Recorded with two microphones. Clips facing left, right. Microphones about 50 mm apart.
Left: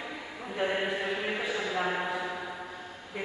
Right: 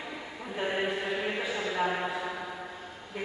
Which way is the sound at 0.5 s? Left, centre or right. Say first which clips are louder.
Left 1 dB; centre.